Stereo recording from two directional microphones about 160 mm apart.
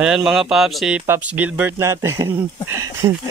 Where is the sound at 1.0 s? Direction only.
10° right (ahead or behind).